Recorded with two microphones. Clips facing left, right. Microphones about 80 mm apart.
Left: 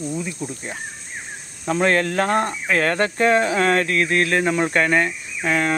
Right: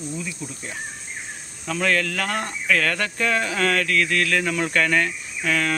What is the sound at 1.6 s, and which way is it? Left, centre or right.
Speech, left.